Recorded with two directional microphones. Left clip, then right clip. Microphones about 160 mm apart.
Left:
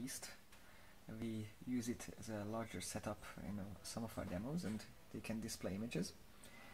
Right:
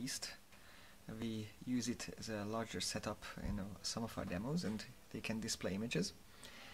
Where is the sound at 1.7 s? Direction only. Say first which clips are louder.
Right 3 dB; 15° right (ahead or behind).